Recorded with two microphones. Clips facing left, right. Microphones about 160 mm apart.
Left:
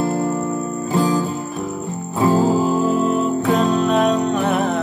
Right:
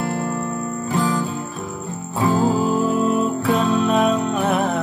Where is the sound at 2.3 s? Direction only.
10° left (ahead or behind).